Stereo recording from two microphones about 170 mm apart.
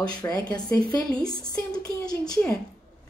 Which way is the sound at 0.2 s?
25° left (ahead or behind).